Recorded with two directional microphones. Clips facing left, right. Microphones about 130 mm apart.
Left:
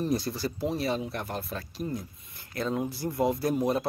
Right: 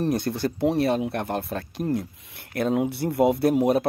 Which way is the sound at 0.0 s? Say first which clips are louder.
Right 5 dB; 65° right (ahead or behind).